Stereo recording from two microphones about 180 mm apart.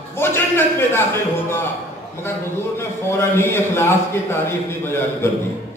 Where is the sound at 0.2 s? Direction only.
15° left (ahead or behind).